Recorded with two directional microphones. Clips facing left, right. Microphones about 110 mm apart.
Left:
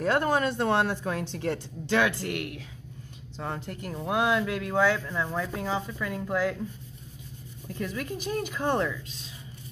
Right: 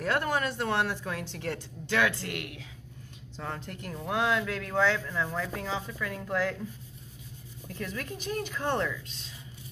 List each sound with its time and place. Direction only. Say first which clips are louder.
0.0 s speech: left 4 dB; 25° left (ahead or behind)
2.2 s speech: left 5 dB; centre (ahead or behind)
3.3 s speech: left 3 dB; 15° left (ahead or behind)
7.8 s speech: left 4 dB; 10° left (ahead or behind)